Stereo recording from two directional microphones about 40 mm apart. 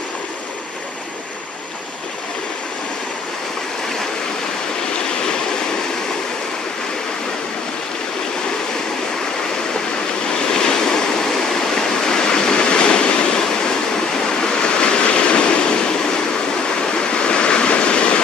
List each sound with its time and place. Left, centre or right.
10.5 s waves: centre
11.2 s waterfall: centre
14.4 s waves: left
17.1 s waves: left